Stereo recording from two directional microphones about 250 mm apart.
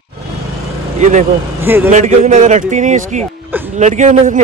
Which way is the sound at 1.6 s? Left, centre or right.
Centre.